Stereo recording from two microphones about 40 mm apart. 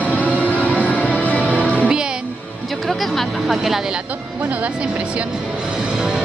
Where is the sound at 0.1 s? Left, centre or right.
Left.